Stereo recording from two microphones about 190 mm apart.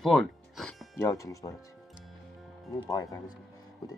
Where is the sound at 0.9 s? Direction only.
15° left (ahead or behind).